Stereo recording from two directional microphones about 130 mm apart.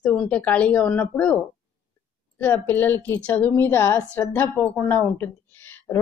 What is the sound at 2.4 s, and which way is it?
A woman's voice, 15° left (ahead or behind).